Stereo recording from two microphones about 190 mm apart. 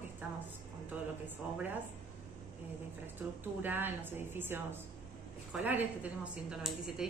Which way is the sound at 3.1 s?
10° right (ahead or behind).